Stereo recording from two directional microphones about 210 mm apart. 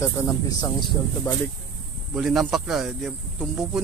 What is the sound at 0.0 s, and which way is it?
Speech, 15° left (ahead or behind).